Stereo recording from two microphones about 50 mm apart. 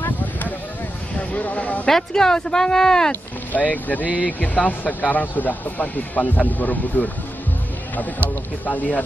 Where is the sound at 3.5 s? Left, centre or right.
Left.